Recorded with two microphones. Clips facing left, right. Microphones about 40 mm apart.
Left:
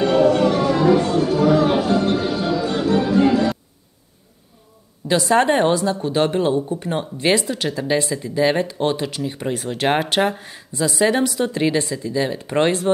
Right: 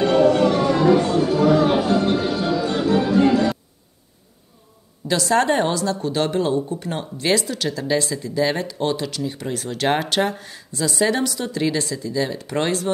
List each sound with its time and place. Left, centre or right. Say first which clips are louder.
0.0 s music: even; centre
5.0 s speech: left 2 dB; left